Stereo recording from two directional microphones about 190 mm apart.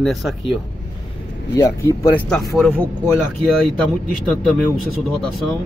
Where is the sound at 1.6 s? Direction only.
15° left (ahead or behind); by 3.2 s centre (ahead or behind).